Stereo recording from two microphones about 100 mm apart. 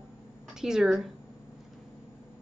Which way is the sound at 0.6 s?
5° right (ahead or behind).